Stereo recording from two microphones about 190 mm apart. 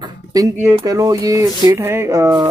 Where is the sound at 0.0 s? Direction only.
20° right (ahead or behind).